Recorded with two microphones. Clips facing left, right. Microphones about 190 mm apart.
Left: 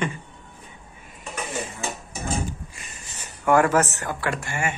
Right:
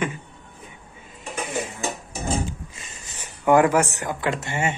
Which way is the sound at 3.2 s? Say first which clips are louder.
Right 2 dB; 15° right (ahead or behind).